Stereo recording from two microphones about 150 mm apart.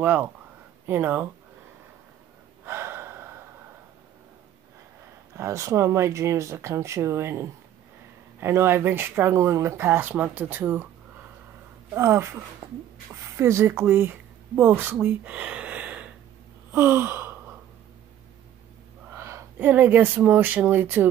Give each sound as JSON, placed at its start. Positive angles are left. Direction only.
{"t": 0.0, "sound": "speech", "side_deg": -10}
{"t": 2.6, "sound": "gasp", "side_deg": -15}
{"t": 5.3, "sound": "speech", "side_deg": -20}
{"t": 11.9, "sound": "speech", "side_deg": -20}
{"t": 16.7, "sound": "gasp", "side_deg": -15}
{"t": 19.1, "sound": "speech", "side_deg": -15}